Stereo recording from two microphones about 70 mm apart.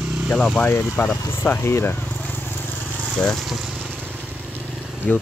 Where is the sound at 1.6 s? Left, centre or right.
Left.